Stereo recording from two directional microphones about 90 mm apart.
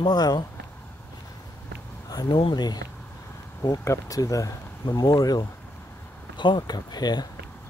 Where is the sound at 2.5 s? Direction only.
50° left (ahead or behind).